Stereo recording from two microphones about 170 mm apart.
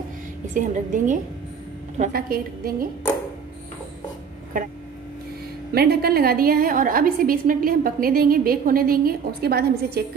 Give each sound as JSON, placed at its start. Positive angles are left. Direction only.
{"t": 0.6, "sound": "a woman's voice", "side_deg": -50}
{"t": 2.0, "sound": "a woman's voice", "side_deg": -60}
{"t": 5.7, "sound": "a woman's voice", "side_deg": -65}